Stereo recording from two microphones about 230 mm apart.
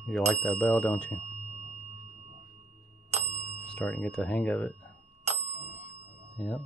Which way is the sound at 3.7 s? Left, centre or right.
Centre.